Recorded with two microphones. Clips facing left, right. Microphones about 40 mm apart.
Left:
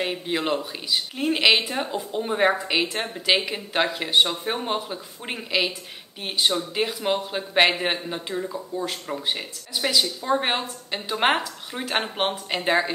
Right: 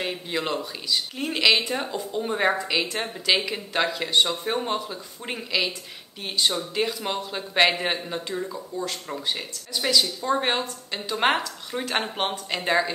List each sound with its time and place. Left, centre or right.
0.0 s a woman's voice: centre